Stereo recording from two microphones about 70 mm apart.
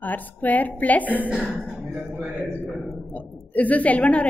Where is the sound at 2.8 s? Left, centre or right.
Centre.